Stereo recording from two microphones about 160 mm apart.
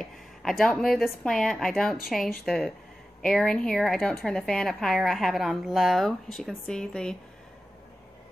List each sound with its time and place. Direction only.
0.0 s a woman's voice: centre (ahead or behind)